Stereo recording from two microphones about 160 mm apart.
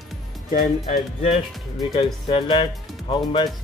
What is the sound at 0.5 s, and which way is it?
Speech, 45° left (ahead or behind).